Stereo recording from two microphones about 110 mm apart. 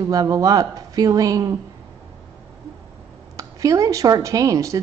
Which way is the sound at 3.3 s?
30° right (ahead or behind).